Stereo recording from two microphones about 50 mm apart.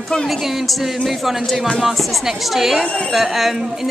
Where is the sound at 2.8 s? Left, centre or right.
Left.